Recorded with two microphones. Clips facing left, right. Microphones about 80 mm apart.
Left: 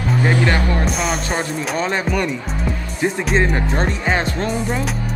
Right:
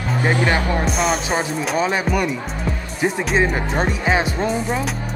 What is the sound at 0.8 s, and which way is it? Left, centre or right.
Speech, centre.